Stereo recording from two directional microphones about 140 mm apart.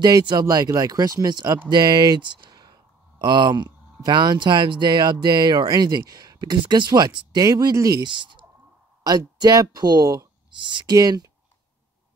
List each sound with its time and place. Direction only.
0.0 s speech: 30° right (ahead or behind)